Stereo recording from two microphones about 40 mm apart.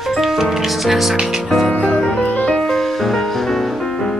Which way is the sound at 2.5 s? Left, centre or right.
Centre.